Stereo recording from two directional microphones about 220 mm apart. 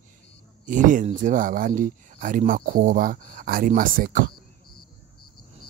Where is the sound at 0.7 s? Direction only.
35° right (ahead or behind).